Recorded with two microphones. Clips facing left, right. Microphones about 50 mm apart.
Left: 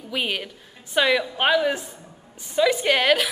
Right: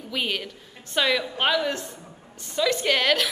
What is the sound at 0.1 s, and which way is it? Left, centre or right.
A woman's voice, centre.